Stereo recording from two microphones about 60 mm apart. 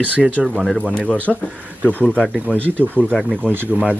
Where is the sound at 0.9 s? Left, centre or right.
Centre.